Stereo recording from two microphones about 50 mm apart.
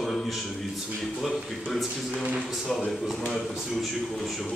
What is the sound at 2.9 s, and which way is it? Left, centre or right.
Speech, centre.